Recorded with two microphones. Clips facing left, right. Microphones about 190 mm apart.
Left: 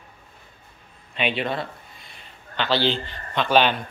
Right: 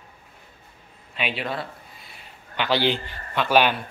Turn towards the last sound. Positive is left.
turn(degrees=-10)  # may be behind; listen again after turning